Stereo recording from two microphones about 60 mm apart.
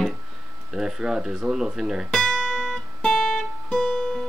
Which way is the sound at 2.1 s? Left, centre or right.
Centre.